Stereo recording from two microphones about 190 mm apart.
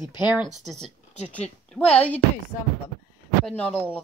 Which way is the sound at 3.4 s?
5° left (ahead or behind).